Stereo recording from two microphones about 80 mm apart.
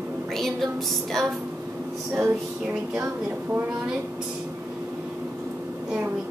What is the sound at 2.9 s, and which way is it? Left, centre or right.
Speech, right.